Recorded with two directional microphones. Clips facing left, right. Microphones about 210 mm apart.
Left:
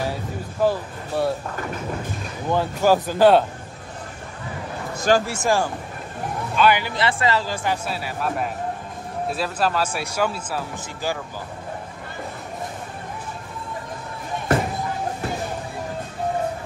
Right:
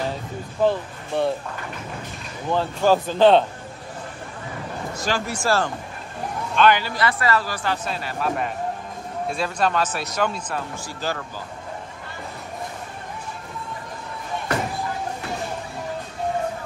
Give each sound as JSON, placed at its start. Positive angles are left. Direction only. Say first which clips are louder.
{"t": 0.6, "sound": "speech", "louder": "right 1 dB", "side_deg": 5}
{"t": 2.5, "sound": "speech", "louder": "left 1 dB", "side_deg": 10}
{"t": 4.9, "sound": "a sound", "louder": "left 8 dB", "side_deg": 50}
{"t": 5.2, "sound": "speech", "louder": "left 1 dB", "side_deg": 20}
{"t": 6.9, "sound": "speech", "louder": "even", "side_deg": 25}